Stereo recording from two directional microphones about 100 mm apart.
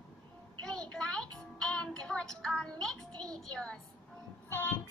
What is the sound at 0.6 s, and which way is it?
Music, 10° left (ahead or behind).